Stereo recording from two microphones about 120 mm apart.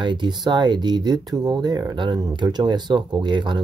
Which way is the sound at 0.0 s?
40° right (ahead or behind).